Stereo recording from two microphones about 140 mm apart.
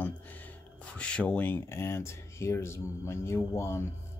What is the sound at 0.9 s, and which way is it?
Speech, 10° left (ahead or behind).